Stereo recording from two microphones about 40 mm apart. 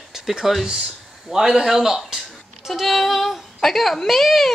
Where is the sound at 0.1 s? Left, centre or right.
Centre.